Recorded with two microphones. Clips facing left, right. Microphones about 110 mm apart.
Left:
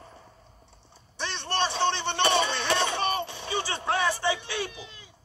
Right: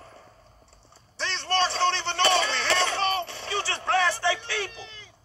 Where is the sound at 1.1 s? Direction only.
15° left (ahead or behind).